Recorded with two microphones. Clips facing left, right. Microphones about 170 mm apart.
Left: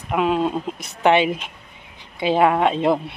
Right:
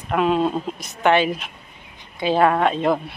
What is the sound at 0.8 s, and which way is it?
A woman's voice, 25° left (ahead or behind).